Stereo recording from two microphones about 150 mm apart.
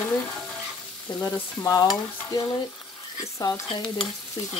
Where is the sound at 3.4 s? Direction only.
30° left (ahead or behind).